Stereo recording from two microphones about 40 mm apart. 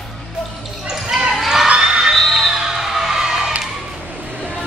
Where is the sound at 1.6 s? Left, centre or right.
Centre.